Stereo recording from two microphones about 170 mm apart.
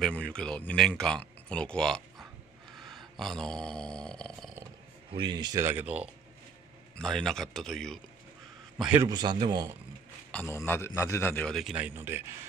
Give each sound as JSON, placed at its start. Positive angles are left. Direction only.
{"t": 0.0, "sound": "speech", "side_deg": 5}
{"t": 2.8, "sound": "a sound", "side_deg": 0}
{"t": 5.1, "sound": "speech", "side_deg": -30}
{"t": 7.0, "sound": "a man's voice", "side_deg": 5}
{"t": 9.0, "sound": "speech", "side_deg": -25}
{"t": 10.3, "sound": "a man's voice", "side_deg": 15}